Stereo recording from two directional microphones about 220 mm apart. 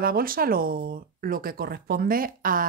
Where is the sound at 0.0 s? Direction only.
40° right (ahead or behind).